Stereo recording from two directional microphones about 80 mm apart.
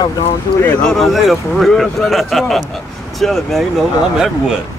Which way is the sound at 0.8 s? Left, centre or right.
Centre.